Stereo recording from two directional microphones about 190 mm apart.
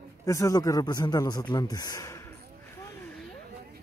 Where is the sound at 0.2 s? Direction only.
15° left (ahead or behind).